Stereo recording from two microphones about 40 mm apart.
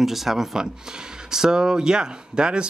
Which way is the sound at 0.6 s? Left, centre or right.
Centre.